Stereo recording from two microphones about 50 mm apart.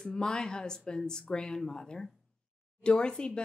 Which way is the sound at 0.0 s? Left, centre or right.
Centre.